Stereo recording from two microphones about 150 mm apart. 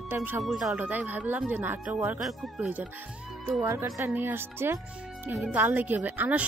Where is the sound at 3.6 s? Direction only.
20° right (ahead or behind).